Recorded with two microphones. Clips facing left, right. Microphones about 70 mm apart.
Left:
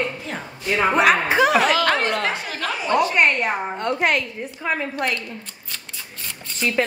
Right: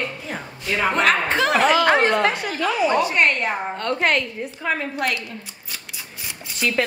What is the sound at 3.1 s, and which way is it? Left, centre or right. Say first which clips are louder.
A woman's voice: left 1 dB; centre.